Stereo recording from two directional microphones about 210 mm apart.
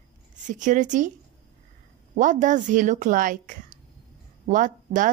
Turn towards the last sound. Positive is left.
turn(degrees=-40)  # may be behind; listen again after turning